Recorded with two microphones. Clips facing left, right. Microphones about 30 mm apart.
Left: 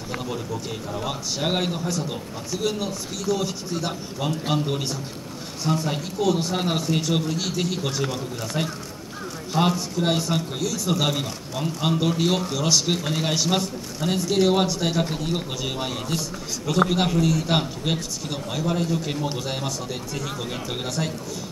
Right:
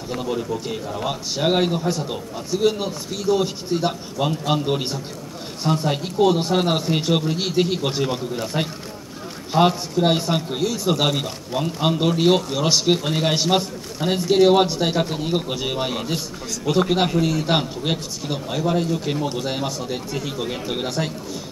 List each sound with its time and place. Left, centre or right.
0.2 s a man's voice: centre